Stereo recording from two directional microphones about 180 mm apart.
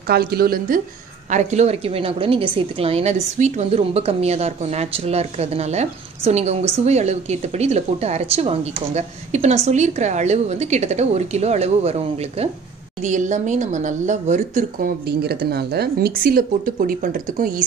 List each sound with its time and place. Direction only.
0.0 s speech: 60° right (ahead or behind)
1.3 s a woman's voice: 40° right (ahead or behind)
15.0 s speech: 65° right (ahead or behind)